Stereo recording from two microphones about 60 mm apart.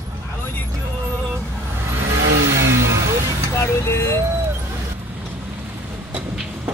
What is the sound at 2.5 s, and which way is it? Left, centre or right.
Vehicle, right.